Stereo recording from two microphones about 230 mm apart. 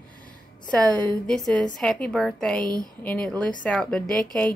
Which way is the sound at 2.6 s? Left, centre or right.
Centre.